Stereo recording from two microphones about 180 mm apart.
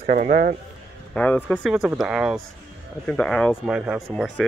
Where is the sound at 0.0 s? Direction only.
45° right (ahead or behind).